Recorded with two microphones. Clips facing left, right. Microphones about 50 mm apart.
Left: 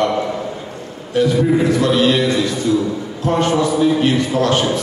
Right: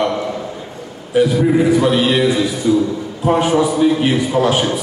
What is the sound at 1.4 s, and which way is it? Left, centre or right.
A man's voice, centre.